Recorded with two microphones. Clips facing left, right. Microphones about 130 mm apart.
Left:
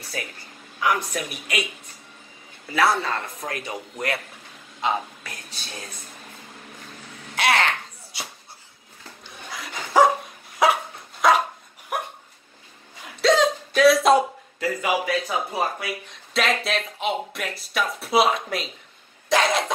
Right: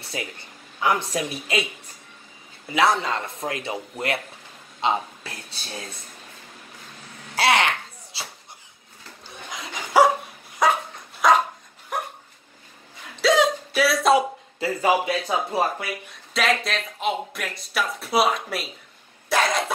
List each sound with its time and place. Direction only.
0.0 s a woman's voice: 25° right (ahead or behind)
2.7 s a man's voice: 20° right (ahead or behind)
4.8 s speech: 25° right (ahead or behind)
7.3 s a man's voice: 25° right (ahead or behind)
8.1 s a sound: 30° right (ahead or behind)
9.9 s dog: 10° right (ahead or behind)
10.6 s dog: 5° left (ahead or behind)
13.2 s hiccup: 5° right (ahead or behind)
14.6 s a man's voice: 30° right (ahead or behind)
16.3 s speech: centre (ahead or behind)
19.2 s cough: centre (ahead or behind)